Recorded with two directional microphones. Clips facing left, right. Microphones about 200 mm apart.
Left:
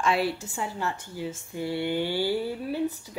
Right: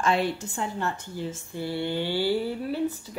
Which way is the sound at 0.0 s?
5° left (ahead or behind).